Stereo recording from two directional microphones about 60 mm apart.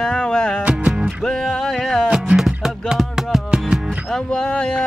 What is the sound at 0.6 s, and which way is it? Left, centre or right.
Music, right.